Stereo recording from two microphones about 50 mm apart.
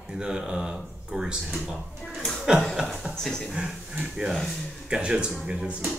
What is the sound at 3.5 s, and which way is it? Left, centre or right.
Speech, centre.